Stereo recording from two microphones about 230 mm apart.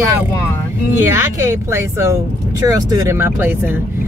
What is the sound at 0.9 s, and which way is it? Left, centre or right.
Speech, centre.